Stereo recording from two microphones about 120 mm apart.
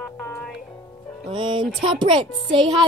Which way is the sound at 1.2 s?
40° right (ahead or behind).